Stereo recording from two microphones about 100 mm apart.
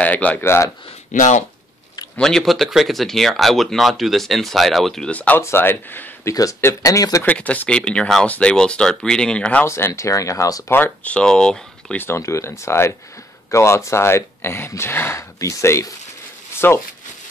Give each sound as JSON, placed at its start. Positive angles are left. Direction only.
{"t": 0.0, "sound": "speech", "side_deg": 15}
{"t": 2.1, "sound": "speech", "side_deg": 5}
{"t": 5.1, "sound": "speech", "side_deg": 15}
{"t": 7.2, "sound": "speech", "side_deg": 15}
{"t": 9.7, "sound": "speech", "side_deg": 25}
{"t": 10.8, "sound": "speech", "side_deg": 15}
{"t": 12.0, "sound": "speech", "side_deg": 25}